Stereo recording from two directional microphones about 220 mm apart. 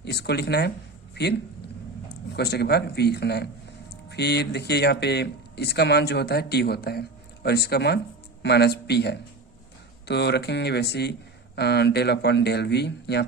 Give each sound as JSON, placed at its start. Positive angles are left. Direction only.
{"t": 0.0, "sound": "speech", "side_deg": 50}